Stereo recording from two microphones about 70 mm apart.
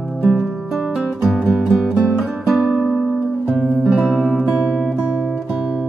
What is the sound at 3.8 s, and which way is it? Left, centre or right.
Music, centre.